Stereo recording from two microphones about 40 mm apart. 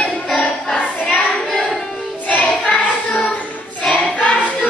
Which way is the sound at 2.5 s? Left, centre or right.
Centre.